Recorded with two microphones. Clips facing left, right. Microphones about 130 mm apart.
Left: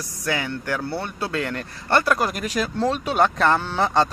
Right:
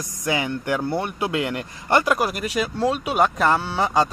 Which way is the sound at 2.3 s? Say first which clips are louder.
Even; 5° right (ahead or behind).